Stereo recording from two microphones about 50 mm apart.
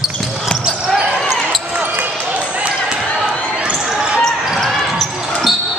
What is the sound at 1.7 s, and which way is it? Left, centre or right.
Basketball bounce, right.